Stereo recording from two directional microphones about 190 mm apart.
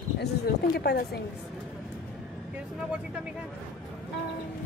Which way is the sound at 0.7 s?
55° left (ahead or behind).